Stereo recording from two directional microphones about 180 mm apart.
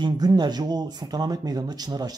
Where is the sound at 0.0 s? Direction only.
25° right (ahead or behind).